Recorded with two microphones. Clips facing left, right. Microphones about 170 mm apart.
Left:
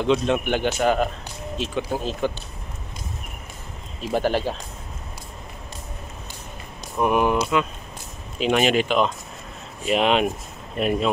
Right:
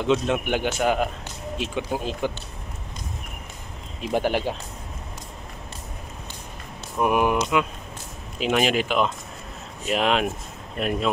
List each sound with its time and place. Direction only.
0.0 s speech: 5° right (ahead or behind)
4.0 s speech: 15° right (ahead or behind)
7.0 s speech: 10° right (ahead or behind)
8.4 s speech: centre (ahead or behind)